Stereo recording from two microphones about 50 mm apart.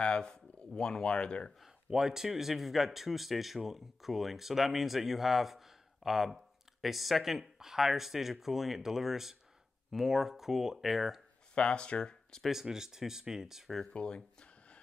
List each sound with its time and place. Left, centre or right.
0.0 s speech: centre
1.6 s a man's voice: centre
11.5 s speech: centre
12.6 s speech: centre
13.9 s speech: centre